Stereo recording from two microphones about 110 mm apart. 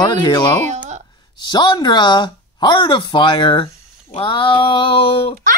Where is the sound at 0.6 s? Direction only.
90° right.